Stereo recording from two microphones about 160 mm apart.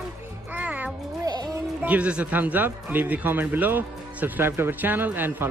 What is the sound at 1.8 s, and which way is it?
A child's voice, 10° right (ahead or behind).